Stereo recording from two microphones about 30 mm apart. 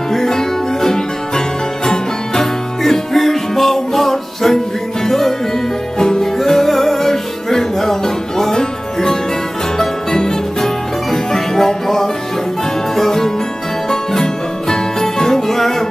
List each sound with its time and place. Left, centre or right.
0.1 s music: centre
5.9 s music: left
6.3 s music: centre
13.8 s music: centre